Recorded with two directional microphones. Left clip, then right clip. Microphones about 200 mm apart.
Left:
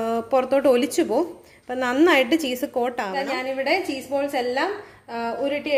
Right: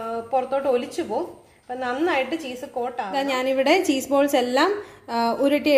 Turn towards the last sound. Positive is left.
turn(degrees=-40)  # may be behind; listen again after turning